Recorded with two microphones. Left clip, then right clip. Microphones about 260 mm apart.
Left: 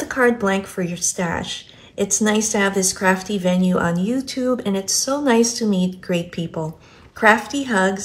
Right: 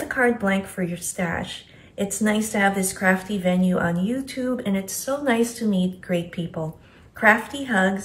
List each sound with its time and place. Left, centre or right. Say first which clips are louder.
0.1 s a woman's voice: left 4 dB; centre
7.6 s a woman's voice: left 2 dB; centre